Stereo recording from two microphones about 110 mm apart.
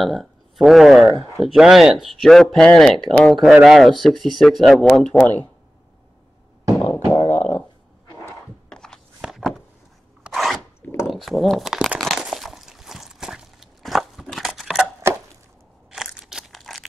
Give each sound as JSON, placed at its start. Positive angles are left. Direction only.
{"t": 0.0, "sound": "speech", "side_deg": 0}
{"t": 6.8, "sound": "didgeridoo", "side_deg": 25}
{"t": 7.2, "sound": "a sound", "side_deg": 15}
{"t": 8.6, "sound": "a sound", "side_deg": 5}
{"t": 10.2, "sound": "filing", "side_deg": 0}
{"t": 11.1, "sound": "crumpling", "side_deg": 0}
{"t": 15.9, "sound": "crunch", "side_deg": -5}